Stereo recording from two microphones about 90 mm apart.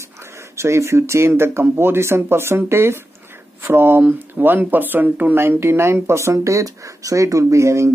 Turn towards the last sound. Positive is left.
turn(degrees=-35)  # may be behind; listen again after turning